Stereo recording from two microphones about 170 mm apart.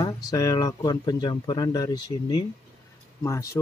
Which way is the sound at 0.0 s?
20° left (ahead or behind).